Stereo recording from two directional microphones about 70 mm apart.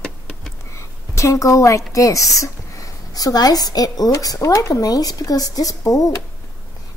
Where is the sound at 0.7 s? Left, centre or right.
Left.